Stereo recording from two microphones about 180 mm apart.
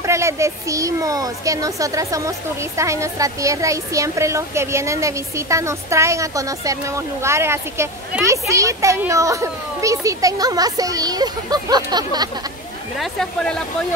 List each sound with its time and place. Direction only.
0.0 s speech: 15° right (ahead or behind)
12.9 s speech: centre (ahead or behind)